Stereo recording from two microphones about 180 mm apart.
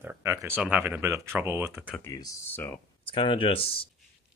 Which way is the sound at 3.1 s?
30° left (ahead or behind).